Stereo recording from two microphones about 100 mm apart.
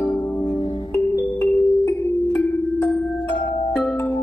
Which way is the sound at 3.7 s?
15° left (ahead or behind).